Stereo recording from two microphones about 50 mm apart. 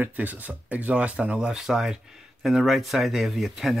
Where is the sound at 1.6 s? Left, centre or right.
Centre.